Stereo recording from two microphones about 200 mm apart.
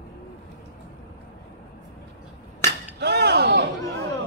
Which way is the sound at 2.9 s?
55° right (ahead or behind).